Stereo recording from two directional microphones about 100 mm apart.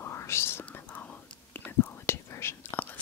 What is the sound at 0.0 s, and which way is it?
Whispering, 25° left (ahead or behind).